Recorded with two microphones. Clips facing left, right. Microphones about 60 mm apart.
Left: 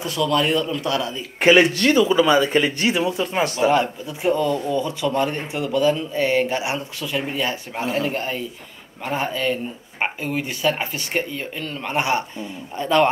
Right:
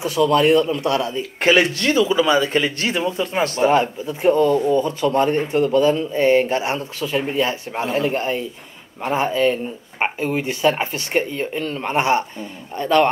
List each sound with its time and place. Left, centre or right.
0.0 s a man's voice: centre
1.4 s speech: centre
4.4 s a man's voice: centre
9.1 s speech: centre
11.9 s speech: centre